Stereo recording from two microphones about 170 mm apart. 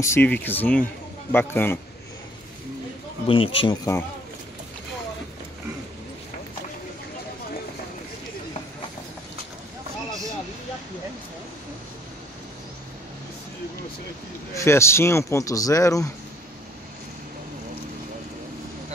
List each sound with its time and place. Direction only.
0.0 s speech: 15° left (ahead or behind)
3.3 s speech: 30° left (ahead or behind)
14.5 s speech: 15° left (ahead or behind)